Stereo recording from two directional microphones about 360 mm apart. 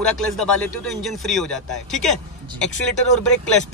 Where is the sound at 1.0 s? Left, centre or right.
Centre.